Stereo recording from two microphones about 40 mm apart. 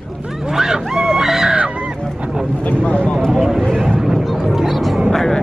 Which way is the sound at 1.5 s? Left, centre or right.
Right.